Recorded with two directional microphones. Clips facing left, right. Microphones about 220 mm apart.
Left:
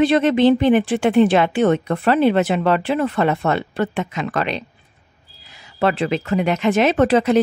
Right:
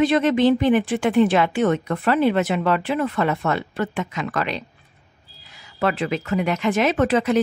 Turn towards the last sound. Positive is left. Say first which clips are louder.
# left 4 dB
turn(degrees=30)  # may be behind; listen again after turning